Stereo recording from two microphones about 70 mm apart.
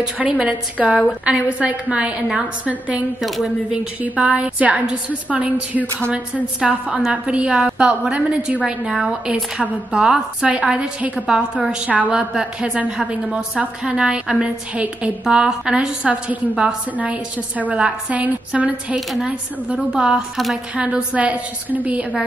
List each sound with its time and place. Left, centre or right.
0.0 s a woman's voice: centre
4.0 s a woman's voice: centre